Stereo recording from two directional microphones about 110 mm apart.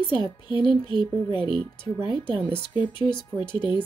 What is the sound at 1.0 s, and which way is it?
A woman's voice, 45° left (ahead or behind).